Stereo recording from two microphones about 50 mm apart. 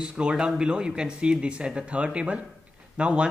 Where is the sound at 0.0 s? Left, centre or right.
Centre.